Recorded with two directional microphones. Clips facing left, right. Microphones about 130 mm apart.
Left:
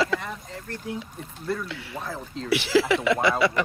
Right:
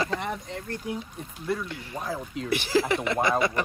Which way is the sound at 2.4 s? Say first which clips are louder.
Left 3 dB; 50° right (ahead or behind).